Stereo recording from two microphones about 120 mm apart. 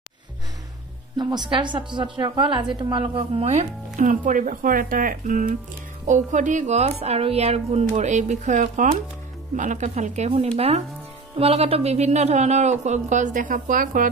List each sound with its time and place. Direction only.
1.1 s a woman's voice: 35° right (ahead or behind)
3.4 s speech: 85° right